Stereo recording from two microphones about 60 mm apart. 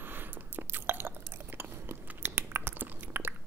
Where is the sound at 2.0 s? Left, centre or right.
Right.